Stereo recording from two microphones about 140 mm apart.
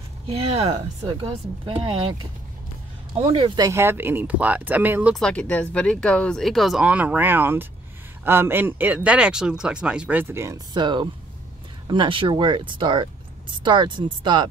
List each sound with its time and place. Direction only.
0.3 s speech: 40° right (ahead or behind)
3.3 s speech: 40° right (ahead or behind)
3.6 s speech: 20° right (ahead or behind)
5.1 s speech: 5° left (ahead or behind); by 10.6 s 20° right (ahead or behind)
10.7 s speech: 35° right (ahead or behind)